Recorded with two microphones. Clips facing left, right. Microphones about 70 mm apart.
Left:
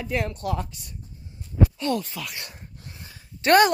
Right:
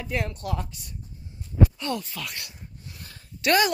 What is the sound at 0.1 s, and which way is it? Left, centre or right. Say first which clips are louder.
Speech: left 2 dB; left.